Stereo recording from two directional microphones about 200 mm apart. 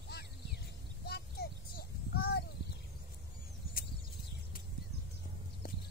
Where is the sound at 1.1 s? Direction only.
50° left (ahead or behind).